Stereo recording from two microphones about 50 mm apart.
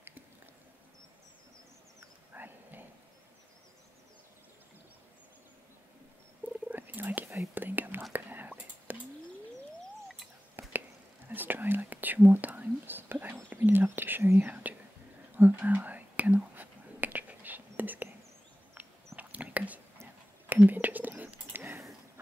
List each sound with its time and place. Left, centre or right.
2.3 s insect: right
6.7 s a sound: right
7.5 s whispering: right
10.6 s a sound: right
11.2 s whispering: right
19.1 s whispering: right